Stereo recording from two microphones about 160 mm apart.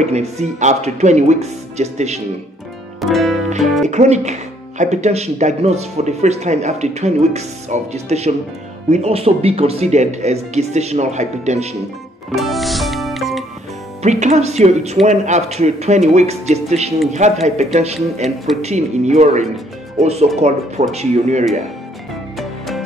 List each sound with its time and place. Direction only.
0.0 s speech: 45° right (ahead or behind)
3.0 s music: centre (ahead or behind)
3.8 s speech: 45° right (ahead or behind)
12.4 s music: centre (ahead or behind)
14.0 s speech: 45° right (ahead or behind)